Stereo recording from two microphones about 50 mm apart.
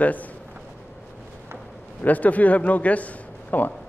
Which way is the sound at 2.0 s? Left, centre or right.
Left.